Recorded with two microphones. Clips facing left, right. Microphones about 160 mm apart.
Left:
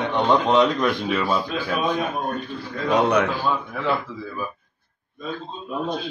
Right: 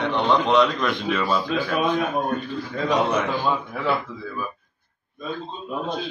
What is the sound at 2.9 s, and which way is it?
Speech, 65° left (ahead or behind).